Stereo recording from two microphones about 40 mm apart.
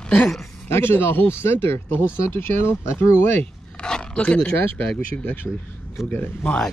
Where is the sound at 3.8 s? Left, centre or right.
Left.